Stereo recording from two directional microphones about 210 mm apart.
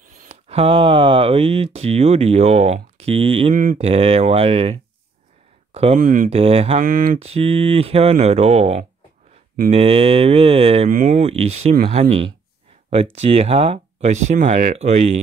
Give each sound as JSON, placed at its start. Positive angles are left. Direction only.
{"t": 0.2, "sound": "speech", "side_deg": -30}
{"t": 6.3, "sound": "speech", "side_deg": -25}
{"t": 6.8, "sound": "speech", "side_deg": -40}
{"t": 7.2, "sound": "speech", "side_deg": -30}